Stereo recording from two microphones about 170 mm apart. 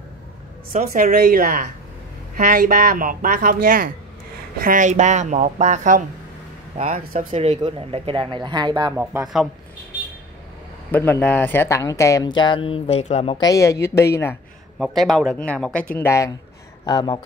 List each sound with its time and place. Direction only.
0.7 s a woman's voice: 55° right (ahead or behind)
7.2 s speech: 35° right (ahead or behind)
8.9 s speech: 10° right (ahead or behind)
10.9 s speech: 10° left (ahead or behind); by 13.4 s 35° left (ahead or behind)
13.4 s speech: 20° left (ahead or behind)
14.8 s speech: centre (ahead or behind); by 17.2 s 25° left (ahead or behind)